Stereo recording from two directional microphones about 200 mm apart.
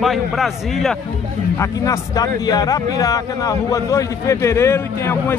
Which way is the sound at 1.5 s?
15° left (ahead or behind).